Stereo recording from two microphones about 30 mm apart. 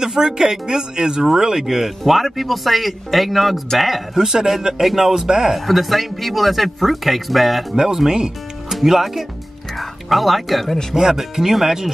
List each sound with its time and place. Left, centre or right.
0.0 s speech: right
2.0 s speech: centre
4.1 s speech: centre
5.7 s speech: centre
7.7 s speech: centre
9.8 s speech: centre
11.0 s speech: centre